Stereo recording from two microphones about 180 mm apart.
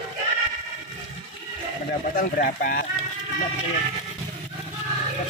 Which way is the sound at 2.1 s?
55° left (ahead or behind).